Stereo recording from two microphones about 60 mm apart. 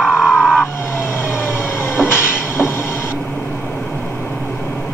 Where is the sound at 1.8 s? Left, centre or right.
Left.